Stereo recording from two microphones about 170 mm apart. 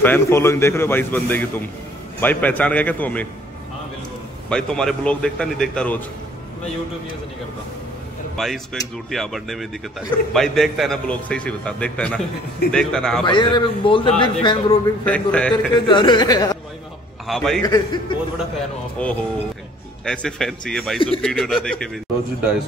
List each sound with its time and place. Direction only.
0.0 s a man's voice: 15° left (ahead or behind)
4.5 s speech: 5° left (ahead or behind)
8.4 s speech: centre (ahead or behind)
13.2 s a man's voice: 25° left (ahead or behind)
15.0 s a man's voice: 5° left (ahead or behind)
15.9 s a man's voice: 25° left (ahead or behind)
17.3 s speech: centre (ahead or behind)
17.6 s a man's voice: 20° left (ahead or behind)
19.0 s a man's voice: 5° left (ahead or behind)